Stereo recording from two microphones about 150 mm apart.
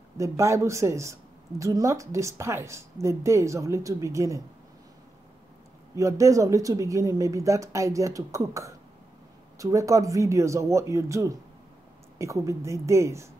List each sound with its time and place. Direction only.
0.2 s a woman's voice: 20° right (ahead or behind)
5.9 s a woman's voice: 20° right (ahead or behind)